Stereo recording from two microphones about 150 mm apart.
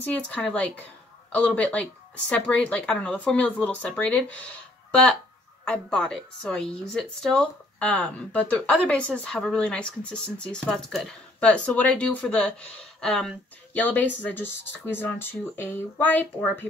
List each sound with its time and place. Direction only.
0.0 s speech: 10° left (ahead or behind)